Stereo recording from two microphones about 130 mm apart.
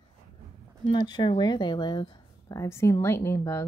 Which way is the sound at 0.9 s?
35° left (ahead or behind).